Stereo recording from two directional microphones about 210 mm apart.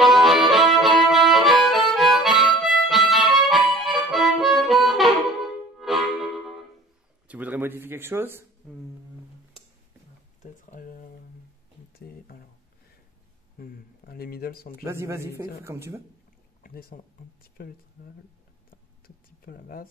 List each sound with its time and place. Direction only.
0.0 s music: centre (ahead or behind)
3.1 s harmonica: centre (ahead or behind)
5.8 s music: centre (ahead or behind)
7.2 s speech: 5° right (ahead or behind)
10.4 s speech: 35° left (ahead or behind)
13.6 s speech: 45° left (ahead or behind)
14.9 s speech: 15° right (ahead or behind)
16.6 s speech: 45° left (ahead or behind)
18.7 s a sound: 45° left (ahead or behind)